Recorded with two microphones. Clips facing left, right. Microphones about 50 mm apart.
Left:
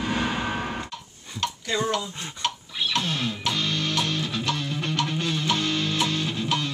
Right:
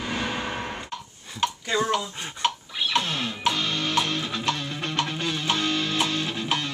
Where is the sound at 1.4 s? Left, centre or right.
Centre.